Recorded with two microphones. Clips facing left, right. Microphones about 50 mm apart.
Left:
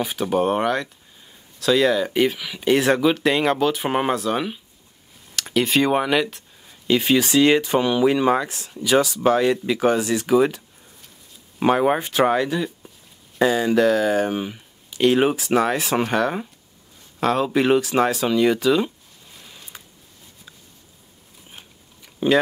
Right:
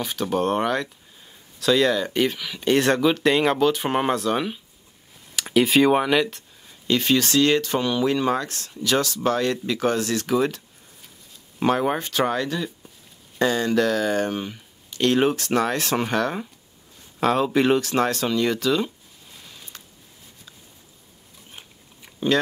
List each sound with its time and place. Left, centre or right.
0.0 s speech: centre
11.6 s speech: centre
19.3 s a sound: centre